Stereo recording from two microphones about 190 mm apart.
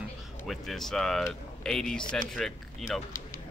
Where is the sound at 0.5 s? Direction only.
Centre (ahead or behind).